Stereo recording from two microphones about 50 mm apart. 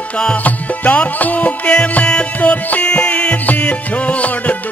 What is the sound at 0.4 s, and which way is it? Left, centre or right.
Music, left.